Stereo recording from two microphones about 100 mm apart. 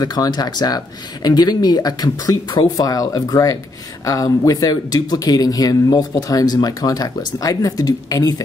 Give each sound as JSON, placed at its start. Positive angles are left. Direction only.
{"t": 0.0, "sound": "speech", "side_deg": 40}